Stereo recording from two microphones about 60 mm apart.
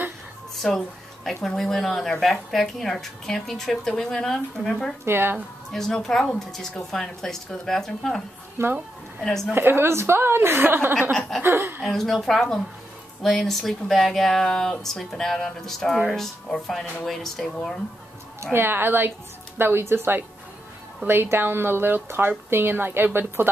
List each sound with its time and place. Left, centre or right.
1.2 s speech: centre
5.0 s a woman's voice: right
5.7 s speech: centre
8.6 s a woman's voice: right
9.2 s speech: centre
9.5 s a woman's voice: right
11.1 s speech: centre
11.4 s a woman's voice: right
11.8 s speech: centre
18.4 s a woman's voice: right